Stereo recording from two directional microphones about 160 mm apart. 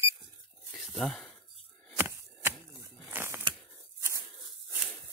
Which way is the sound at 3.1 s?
15° right (ahead or behind).